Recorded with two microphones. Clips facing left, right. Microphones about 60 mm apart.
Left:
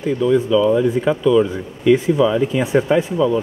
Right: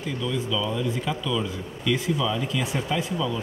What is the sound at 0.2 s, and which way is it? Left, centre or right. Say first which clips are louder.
Speech: left 13 dB; left.